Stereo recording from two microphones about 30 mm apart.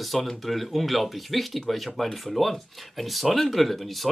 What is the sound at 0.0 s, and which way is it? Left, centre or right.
Speech, centre.